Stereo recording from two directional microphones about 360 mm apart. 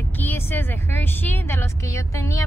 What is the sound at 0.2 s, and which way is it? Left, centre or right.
A child's voice, centre.